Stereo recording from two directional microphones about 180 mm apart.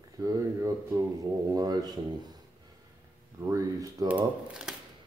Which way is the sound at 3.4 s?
20° right (ahead or behind).